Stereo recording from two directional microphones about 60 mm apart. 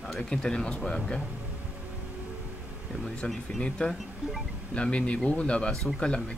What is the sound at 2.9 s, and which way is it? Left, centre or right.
Speech, centre.